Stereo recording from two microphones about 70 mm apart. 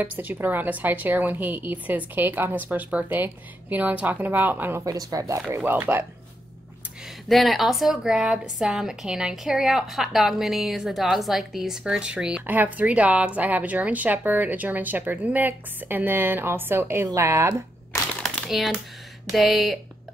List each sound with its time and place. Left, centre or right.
0.0 s a woman's voice: right
4.8 s speech: right
5.6 s a woman's voice: right
7.2 s a woman's voice: centre
12.4 s a woman's voice: right
18.2 s a sound: centre
19.3 s a woman's voice: centre